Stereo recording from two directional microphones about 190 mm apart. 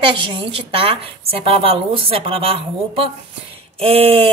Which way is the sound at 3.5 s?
30° right (ahead or behind).